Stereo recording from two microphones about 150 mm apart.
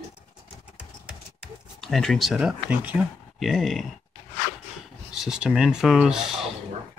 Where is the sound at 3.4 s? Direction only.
Centre (ahead or behind).